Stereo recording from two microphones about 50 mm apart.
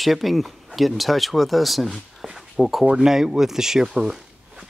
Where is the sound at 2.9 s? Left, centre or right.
Centre.